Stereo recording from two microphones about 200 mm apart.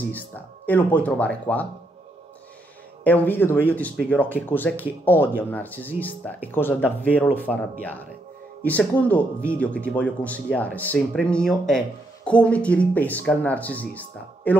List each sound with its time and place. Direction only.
0.1 s speech: 10° left (ahead or behind)
3.0 s speech: 10° left (ahead or behind)
8.6 s speech: 5° left (ahead or behind)